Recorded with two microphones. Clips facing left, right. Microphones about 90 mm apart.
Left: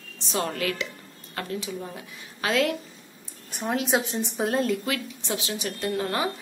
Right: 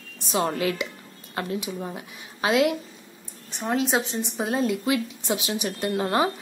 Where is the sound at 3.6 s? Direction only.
5° left (ahead or behind); by 6.3 s 25° right (ahead or behind).